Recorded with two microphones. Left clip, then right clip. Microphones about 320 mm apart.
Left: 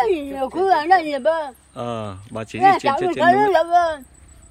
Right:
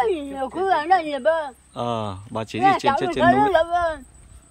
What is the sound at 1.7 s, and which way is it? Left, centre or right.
Speech, centre.